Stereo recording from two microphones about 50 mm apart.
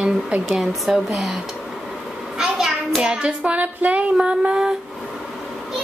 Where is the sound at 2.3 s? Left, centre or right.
Centre.